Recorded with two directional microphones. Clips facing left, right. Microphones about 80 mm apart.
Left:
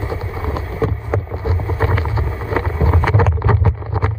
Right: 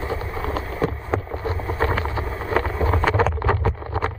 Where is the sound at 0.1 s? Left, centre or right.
Centre.